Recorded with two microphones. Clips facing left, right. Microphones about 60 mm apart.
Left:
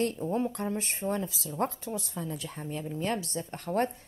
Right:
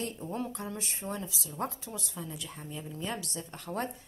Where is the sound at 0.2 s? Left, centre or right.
Left.